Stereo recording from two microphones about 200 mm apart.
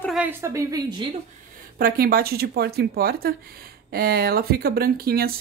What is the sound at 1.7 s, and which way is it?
Speech, 50° right (ahead or behind).